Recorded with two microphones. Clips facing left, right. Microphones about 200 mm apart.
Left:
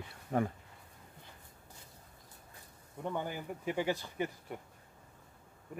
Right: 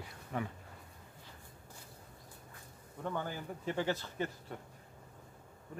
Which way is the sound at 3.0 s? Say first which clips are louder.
Left 1 dB; 15° left (ahead or behind).